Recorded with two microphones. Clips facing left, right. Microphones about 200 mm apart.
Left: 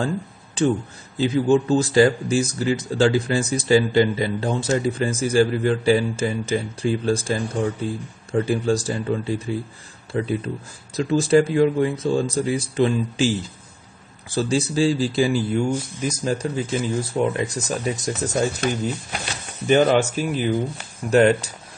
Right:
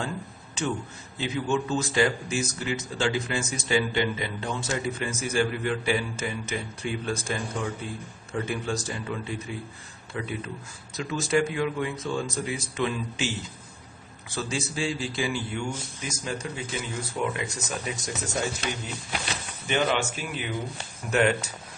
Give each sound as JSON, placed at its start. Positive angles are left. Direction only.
{"t": 0.6, "sound": "speech", "side_deg": 35}
{"t": 14.3, "sound": "speech", "side_deg": 35}
{"t": 19.7, "sound": "speech", "side_deg": 40}